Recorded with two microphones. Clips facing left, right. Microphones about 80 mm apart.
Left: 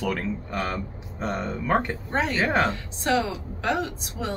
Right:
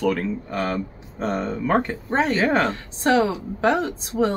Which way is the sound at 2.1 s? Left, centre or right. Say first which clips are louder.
Right 5 dB; right.